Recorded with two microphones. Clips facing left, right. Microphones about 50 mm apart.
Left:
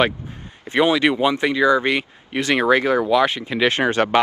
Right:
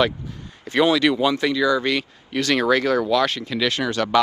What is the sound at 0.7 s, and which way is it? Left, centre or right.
Speech, left.